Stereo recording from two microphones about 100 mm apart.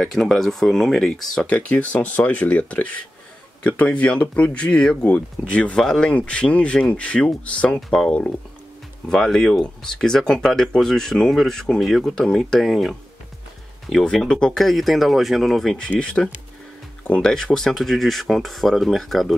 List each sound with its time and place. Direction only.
0.0 s speech: 5° left (ahead or behind)
1.6 s speech: 15° left (ahead or behind)